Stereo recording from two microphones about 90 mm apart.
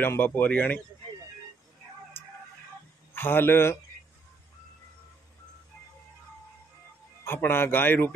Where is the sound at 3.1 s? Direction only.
25° left (ahead or behind).